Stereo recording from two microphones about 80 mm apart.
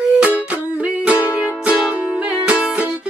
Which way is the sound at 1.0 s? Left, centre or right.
Centre.